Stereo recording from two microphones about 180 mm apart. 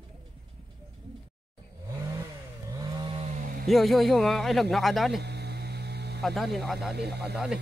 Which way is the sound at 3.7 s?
Centre (ahead or behind).